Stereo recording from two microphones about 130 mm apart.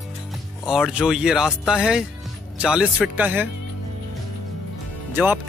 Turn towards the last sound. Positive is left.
turn(degrees=-15)  # may be behind; listen again after turning